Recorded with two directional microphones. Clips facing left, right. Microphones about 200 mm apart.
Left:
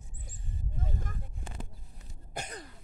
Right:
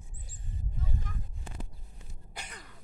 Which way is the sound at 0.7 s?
50° left (ahead or behind).